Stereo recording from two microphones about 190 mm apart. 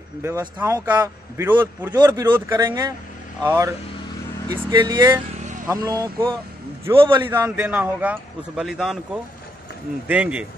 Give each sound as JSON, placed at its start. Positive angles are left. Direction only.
{"t": 0.2, "sound": "a man's voice", "side_deg": -15}
{"t": 7.2, "sound": "a man's voice", "side_deg": -10}